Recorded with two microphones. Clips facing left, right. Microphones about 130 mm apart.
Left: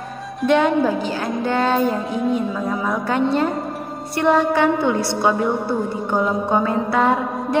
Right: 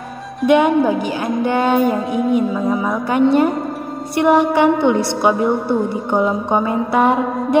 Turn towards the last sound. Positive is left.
turn(degrees=-15)  # may be behind; listen again after turning